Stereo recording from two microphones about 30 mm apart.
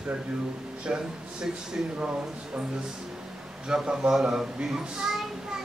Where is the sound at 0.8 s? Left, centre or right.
Right.